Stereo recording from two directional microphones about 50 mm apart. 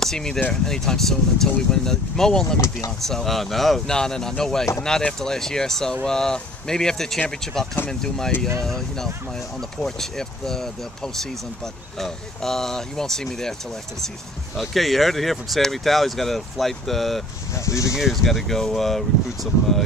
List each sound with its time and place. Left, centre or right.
0.0 s speech: centre
14.6 s speech: centre
17.6 s speech: left
17.9 s speech: centre